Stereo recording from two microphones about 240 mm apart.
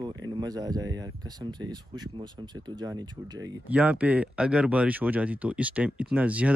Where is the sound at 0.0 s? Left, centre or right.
Centre.